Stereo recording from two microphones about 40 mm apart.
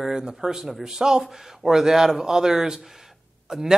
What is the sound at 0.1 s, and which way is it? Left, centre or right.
Speech, centre.